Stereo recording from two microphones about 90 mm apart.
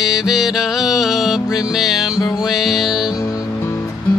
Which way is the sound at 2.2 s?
45° left (ahead or behind).